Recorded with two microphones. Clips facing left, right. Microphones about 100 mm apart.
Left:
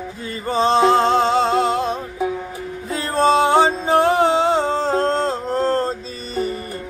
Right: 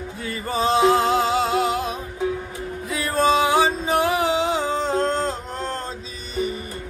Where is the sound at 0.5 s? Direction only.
30° left (ahead or behind).